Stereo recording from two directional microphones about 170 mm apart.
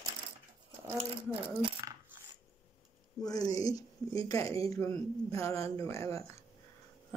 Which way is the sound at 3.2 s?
20° left (ahead or behind).